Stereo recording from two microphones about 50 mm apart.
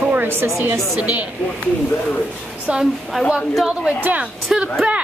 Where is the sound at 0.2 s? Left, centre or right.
Right.